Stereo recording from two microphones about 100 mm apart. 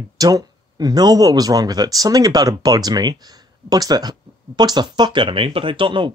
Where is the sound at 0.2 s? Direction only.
40° right (ahead or behind).